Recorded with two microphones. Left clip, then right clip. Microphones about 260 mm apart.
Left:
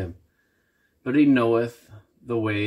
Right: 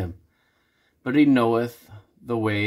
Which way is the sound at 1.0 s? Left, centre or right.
Right.